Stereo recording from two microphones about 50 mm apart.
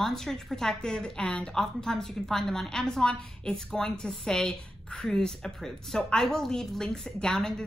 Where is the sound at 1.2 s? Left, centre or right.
Left.